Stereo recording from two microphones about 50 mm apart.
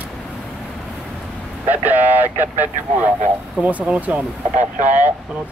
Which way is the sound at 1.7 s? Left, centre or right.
Right.